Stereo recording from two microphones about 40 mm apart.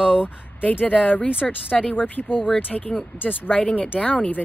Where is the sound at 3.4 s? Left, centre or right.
Left.